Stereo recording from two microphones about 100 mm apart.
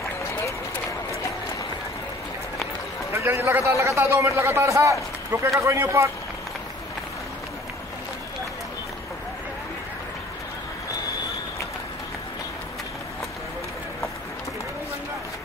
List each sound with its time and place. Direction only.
3.1 s a man's voice: 25° right (ahead or behind)